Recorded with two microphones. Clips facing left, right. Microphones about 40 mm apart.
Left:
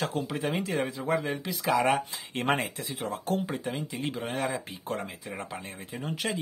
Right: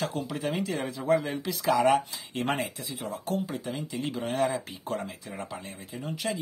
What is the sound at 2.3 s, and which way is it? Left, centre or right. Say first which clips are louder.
Speech: left 2 dB; left.